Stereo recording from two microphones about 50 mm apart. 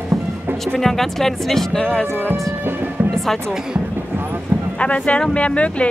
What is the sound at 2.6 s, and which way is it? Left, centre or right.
Speech, right.